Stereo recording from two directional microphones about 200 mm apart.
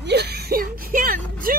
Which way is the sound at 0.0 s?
55° right (ahead or behind).